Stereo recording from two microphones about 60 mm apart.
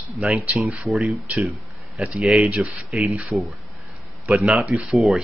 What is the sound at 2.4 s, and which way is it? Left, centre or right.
Speech, right.